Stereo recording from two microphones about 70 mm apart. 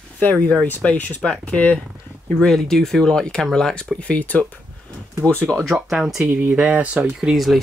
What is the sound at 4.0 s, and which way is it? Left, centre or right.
Speech, left.